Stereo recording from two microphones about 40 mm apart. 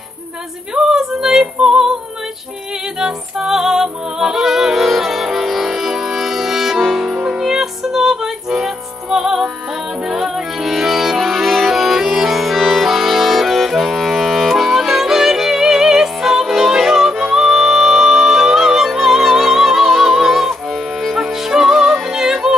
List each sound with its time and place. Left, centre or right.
0.7 s female singing: centre
3.0 s music: centre
7.3 s music: centre
21.2 s music: centre